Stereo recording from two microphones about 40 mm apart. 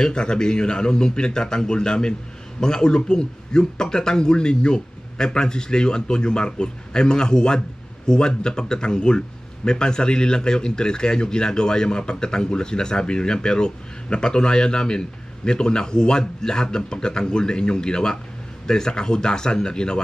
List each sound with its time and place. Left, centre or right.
0.0 s speech: left